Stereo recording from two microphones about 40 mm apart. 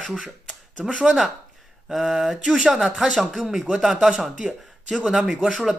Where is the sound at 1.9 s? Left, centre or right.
Centre.